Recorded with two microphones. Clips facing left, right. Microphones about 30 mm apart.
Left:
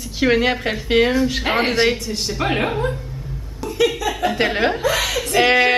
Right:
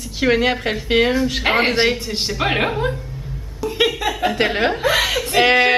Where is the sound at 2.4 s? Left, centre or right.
Right.